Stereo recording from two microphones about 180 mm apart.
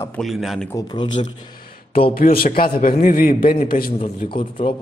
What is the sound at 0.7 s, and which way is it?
Speech, 25° left (ahead or behind).